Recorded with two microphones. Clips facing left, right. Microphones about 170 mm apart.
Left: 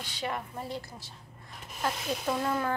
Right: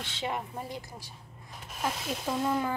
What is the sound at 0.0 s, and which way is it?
A woman's voice, 20° right (ahead or behind).